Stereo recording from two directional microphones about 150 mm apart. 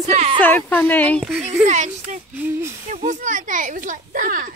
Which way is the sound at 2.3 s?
15° right (ahead or behind).